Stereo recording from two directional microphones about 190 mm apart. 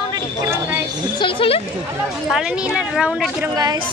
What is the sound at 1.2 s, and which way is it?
Speech, 25° left (ahead or behind).